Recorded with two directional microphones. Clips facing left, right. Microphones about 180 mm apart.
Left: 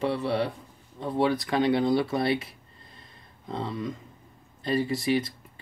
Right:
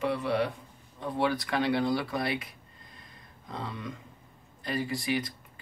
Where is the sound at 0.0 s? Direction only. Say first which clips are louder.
Left 2 dB; 30° left (ahead or behind).